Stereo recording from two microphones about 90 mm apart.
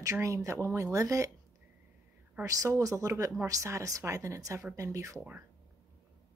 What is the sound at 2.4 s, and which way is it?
Speech, 35° right (ahead or behind).